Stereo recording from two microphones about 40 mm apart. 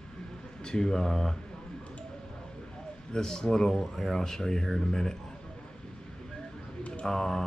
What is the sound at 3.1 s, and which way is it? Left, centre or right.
Speech, centre.